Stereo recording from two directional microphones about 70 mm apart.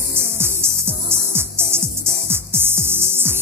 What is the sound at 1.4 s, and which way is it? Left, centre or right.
Music, right.